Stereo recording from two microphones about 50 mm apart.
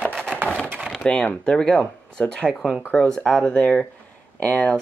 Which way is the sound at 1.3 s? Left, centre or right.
Centre.